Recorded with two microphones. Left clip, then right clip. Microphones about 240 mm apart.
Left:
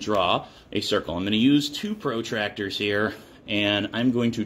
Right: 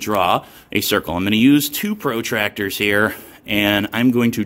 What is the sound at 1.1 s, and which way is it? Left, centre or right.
Speech, right.